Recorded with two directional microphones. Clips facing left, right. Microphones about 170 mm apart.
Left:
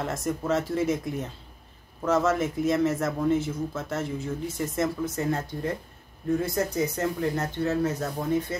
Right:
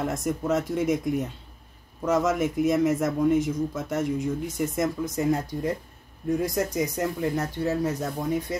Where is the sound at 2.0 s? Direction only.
10° right (ahead or behind).